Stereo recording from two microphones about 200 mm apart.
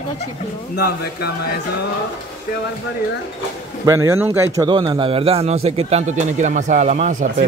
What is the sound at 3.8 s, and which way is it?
Speech, 15° right (ahead or behind).